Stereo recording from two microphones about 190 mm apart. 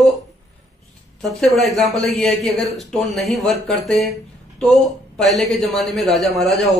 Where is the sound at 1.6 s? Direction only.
Centre (ahead or behind).